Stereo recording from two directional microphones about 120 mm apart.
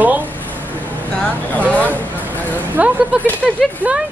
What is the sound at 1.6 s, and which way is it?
Speech, 15° right (ahead or behind).